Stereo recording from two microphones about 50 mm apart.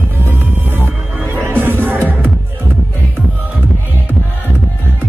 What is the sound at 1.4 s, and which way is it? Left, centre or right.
Music, right.